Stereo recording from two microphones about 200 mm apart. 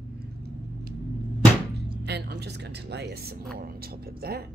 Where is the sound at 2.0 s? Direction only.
55° right (ahead or behind).